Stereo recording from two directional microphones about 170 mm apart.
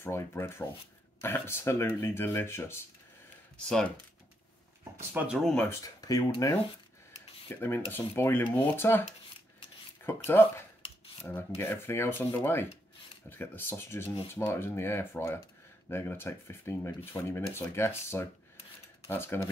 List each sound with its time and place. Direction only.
0.0 s speech: 15° left (ahead or behind)
5.1 s speech: 5° right (ahead or behind)
5.6 s speech: 15° left (ahead or behind)
10.0 s speech: 15° left (ahead or behind)